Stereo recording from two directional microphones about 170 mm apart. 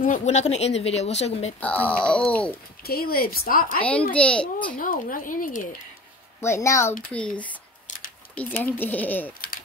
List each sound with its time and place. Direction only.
0.0 s speech: 45° left (ahead or behind)
1.6 s speech: 5° left (ahead or behind)
2.8 s speech: 60° left (ahead or behind)
4.1 s speech: 5° left (ahead or behind)
4.7 s speech: 55° left (ahead or behind)
6.4 s speech: 15° left (ahead or behind)